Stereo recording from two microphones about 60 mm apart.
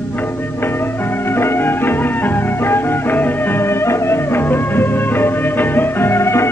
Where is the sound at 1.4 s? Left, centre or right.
Left.